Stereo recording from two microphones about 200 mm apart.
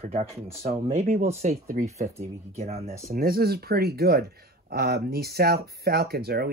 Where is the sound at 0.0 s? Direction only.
30° right (ahead or behind).